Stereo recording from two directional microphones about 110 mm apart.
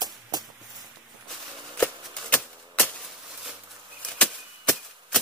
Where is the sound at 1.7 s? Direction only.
15° left (ahead or behind).